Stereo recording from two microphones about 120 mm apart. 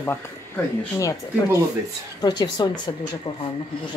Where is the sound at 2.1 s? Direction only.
35° left (ahead or behind).